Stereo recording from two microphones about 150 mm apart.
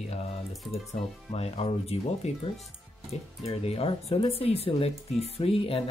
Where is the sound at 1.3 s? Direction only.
45° left (ahead or behind).